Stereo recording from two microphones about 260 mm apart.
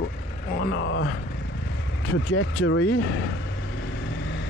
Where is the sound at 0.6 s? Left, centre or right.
Left.